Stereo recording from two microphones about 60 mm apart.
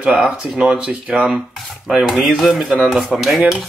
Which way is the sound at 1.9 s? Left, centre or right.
Centre.